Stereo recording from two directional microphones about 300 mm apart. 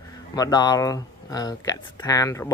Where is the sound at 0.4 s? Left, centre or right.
Centre.